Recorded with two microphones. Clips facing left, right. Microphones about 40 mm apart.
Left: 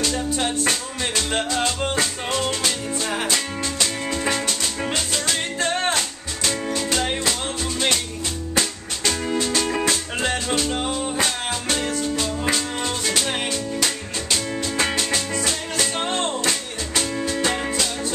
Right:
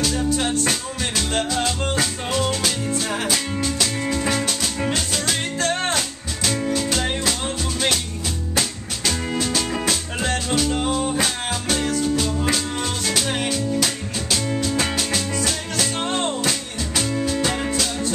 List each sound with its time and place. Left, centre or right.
0.0 s music: centre
9.4 s music: centre